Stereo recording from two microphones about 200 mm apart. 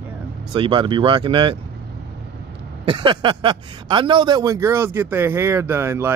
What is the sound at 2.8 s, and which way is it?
Speech, 25° right (ahead or behind).